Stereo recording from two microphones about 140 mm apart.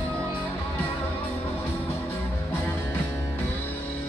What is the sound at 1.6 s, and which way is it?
Music, 15° left (ahead or behind).